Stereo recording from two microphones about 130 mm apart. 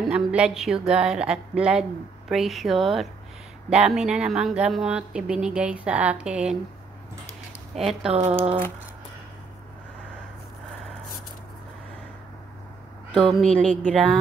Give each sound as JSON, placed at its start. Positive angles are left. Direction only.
{"t": 0.0, "sound": "a woman's voice", "side_deg": -5}
{"t": 7.8, "sound": "a woman's voice", "side_deg": 0}
{"t": 8.1, "sound": "speech", "side_deg": -45}
{"t": 13.1, "sound": "a woman's voice", "side_deg": 5}